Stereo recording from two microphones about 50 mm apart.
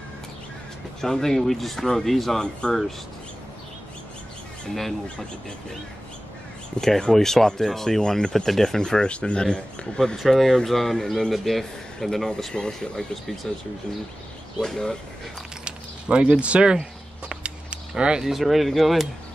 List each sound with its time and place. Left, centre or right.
1.0 s speech: centre
2.6 s speech: centre
6.8 s speech: centre
9.9 s speech: centre
12.5 s speech: centre
14.6 s speech: centre
15.6 s mechanisms: right
17.3 s a sound: right
18.2 s speech: centre